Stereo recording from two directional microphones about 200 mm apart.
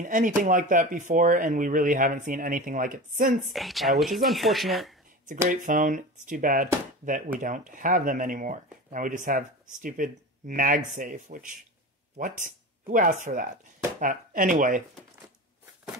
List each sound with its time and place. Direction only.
0.0 s speech: 40° right (ahead or behind)
3.5 s speech: centre (ahead or behind)
5.5 s speech: 40° right (ahead or behind)